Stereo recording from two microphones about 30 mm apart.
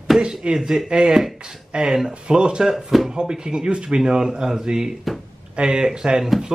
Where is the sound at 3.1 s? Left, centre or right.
Right.